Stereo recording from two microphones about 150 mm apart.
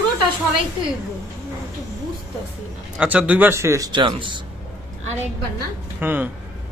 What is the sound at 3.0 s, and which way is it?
Speech, 10° right (ahead or behind).